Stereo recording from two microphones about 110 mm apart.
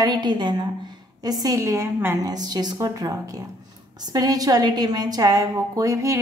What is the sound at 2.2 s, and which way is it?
Speech, 35° right (ahead or behind).